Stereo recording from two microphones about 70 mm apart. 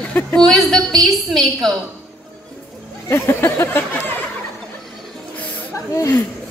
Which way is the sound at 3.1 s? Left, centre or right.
Left.